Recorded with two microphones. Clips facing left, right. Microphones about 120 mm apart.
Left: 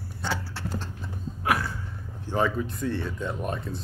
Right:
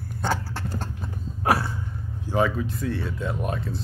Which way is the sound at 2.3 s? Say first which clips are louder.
Right 2 dB; 5° right (ahead or behind).